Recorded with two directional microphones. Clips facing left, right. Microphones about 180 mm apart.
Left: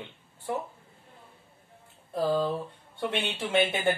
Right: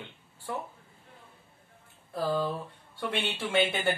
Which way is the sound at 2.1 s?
20° left (ahead or behind).